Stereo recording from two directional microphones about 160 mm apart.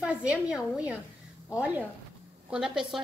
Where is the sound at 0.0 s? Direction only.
5° right (ahead or behind).